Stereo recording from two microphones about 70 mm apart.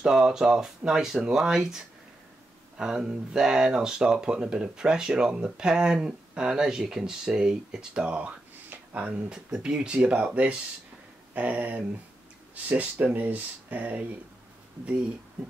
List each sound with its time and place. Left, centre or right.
0.0 s speech: centre